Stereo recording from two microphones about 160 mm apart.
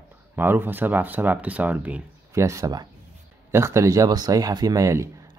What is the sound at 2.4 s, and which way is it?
Speech, 20° right (ahead or behind).